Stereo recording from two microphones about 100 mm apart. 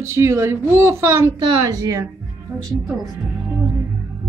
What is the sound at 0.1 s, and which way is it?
A woman's voice, 25° right (ahead or behind).